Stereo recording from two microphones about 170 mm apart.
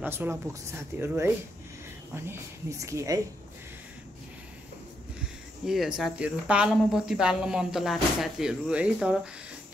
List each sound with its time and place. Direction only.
0.0 s speech: 10° right (ahead or behind)
5.7 s speech: 5° right (ahead or behind)